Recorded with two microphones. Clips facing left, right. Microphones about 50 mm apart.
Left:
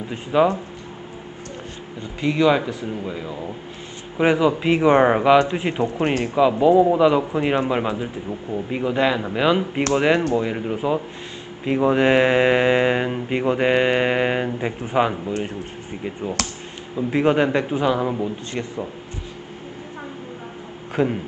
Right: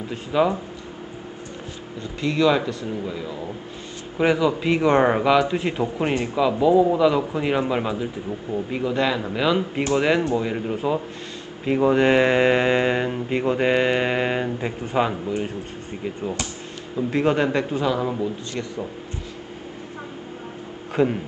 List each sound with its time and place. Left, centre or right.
0.1 s speech: centre
2.1 s speech: centre
5.8 s speech: centre
20.9 s a man's voice: centre